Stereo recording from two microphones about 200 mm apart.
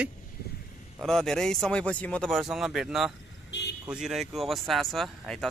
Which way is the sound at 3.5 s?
60° left (ahead or behind).